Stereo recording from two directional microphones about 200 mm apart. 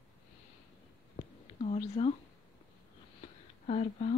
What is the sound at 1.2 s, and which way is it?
Whispering, 35° left (ahead or behind).